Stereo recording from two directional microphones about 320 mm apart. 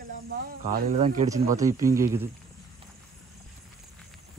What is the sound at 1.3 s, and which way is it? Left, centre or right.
Speech, centre.